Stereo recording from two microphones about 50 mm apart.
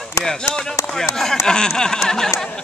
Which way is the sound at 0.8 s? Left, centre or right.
Left.